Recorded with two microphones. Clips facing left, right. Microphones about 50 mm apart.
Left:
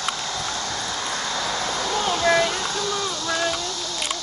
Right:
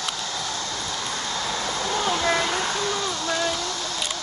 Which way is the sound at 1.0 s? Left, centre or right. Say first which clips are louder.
Left 2 dB; left.